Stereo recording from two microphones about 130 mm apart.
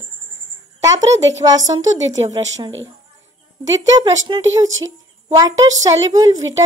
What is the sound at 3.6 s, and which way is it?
A woman's voice, 25° right (ahead or behind).